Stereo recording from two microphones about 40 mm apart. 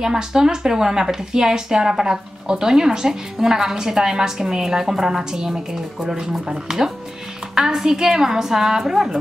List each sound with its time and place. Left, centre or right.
0.0 s speech: centre